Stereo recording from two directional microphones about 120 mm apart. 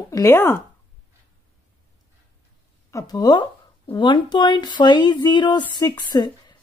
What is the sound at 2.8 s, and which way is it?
Speech, 30° left (ahead or behind).